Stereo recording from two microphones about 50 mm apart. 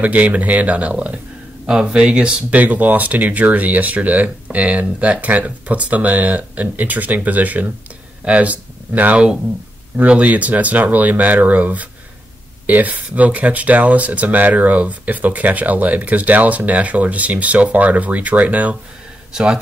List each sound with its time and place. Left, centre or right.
0.0 s speech: right
2.5 s speech: right
19.3 s speech: centre